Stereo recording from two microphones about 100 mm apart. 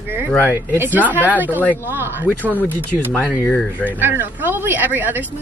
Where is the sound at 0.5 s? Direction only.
20° right (ahead or behind).